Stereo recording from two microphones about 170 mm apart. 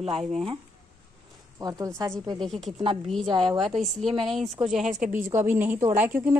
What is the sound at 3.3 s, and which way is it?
Speech, 30° right (ahead or behind).